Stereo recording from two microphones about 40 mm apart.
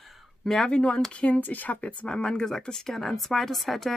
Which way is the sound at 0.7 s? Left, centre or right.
Left.